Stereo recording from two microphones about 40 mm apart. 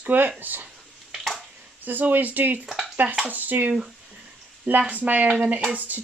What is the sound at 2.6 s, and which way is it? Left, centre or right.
Stir, centre.